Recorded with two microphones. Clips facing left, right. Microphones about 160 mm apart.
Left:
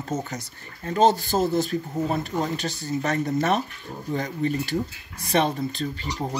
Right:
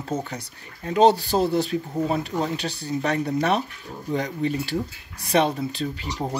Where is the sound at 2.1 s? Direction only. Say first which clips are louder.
Even; centre (ahead or behind).